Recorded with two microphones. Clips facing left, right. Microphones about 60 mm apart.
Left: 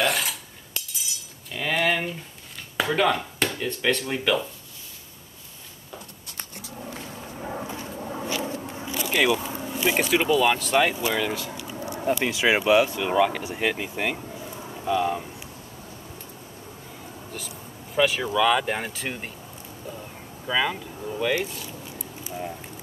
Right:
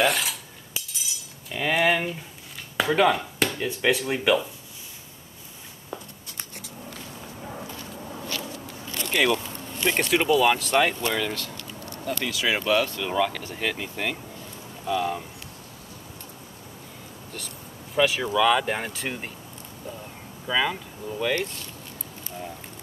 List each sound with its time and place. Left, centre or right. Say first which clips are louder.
0.0 s cutlery: right 1 dB; centre
1.5 s speech: right 2 dB; centre
6.8 s a sound: left 4 dB; centre
8.9 s a sound: left 1 dB; centre
9.6 s speech: left 2 dB; centre
17.3 s speech: even; centre
19.9 s vehicle: even; centre